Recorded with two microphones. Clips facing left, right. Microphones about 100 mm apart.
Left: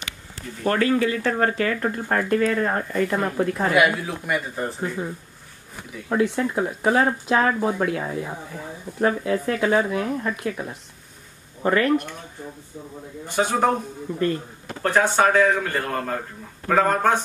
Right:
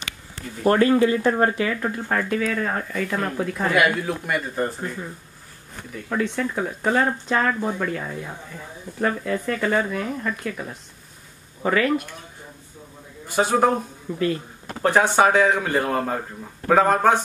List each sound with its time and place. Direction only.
0.7 s speech: 25° right (ahead or behind)
1.3 s speech: 10° right (ahead or behind)
1.8 s speech: 5° left (ahead or behind)
5.8 s speech: 10° left (ahead or behind)
13.3 s speech: 5° right (ahead or behind)